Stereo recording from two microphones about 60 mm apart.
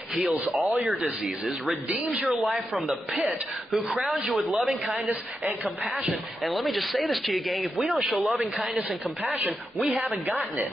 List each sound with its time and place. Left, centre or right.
0.1 s a man's voice: centre
1.9 s speech: right
2.7 s a man's voice: centre
6.4 s a man's voice: centre
9.2 s speech: right